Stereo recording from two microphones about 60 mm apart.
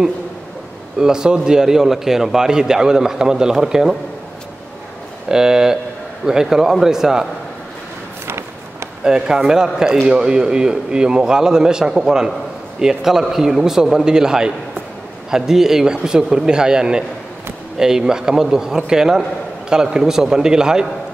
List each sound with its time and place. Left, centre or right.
0.9 s a man's voice: centre
5.3 s a man's voice: centre
8.3 s a sound: right
9.0 s a man's voice: centre